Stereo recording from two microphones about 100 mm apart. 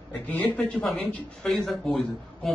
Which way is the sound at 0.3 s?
15° left (ahead or behind).